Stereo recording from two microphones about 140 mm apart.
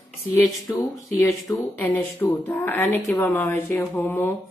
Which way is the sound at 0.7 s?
20° left (ahead or behind).